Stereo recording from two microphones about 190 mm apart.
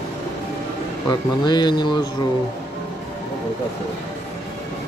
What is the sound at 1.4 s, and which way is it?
Speech, 25° left (ahead or behind).